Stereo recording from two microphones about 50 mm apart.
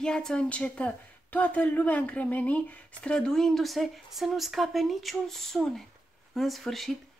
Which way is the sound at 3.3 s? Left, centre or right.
Centre.